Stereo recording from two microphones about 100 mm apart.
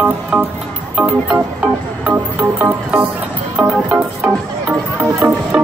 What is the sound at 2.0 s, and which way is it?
Speech, 15° right (ahead or behind).